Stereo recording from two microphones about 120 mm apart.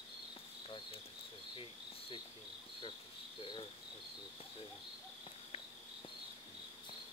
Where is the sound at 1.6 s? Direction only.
45° left (ahead or behind).